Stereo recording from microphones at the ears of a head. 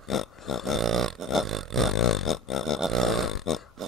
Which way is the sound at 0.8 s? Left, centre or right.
Right.